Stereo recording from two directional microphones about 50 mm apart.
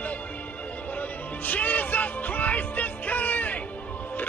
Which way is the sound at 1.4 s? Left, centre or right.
Left.